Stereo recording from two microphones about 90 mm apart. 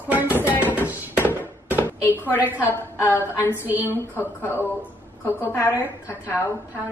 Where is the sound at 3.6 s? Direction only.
20° right (ahead or behind).